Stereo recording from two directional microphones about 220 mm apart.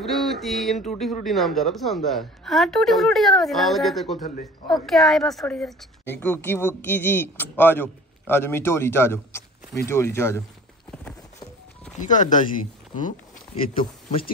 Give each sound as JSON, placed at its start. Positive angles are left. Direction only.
{"t": 0.0, "sound": "a sound", "side_deg": 0}
{"t": 1.2, "sound": "a woman's voice", "side_deg": 0}
{"t": 12.0, "sound": "speech", "side_deg": 35}